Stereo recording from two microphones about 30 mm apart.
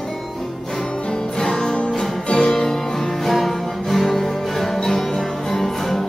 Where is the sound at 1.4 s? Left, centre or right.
Left.